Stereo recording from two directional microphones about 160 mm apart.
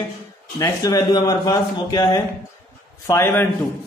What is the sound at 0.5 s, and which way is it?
A man's voice, 20° left (ahead or behind).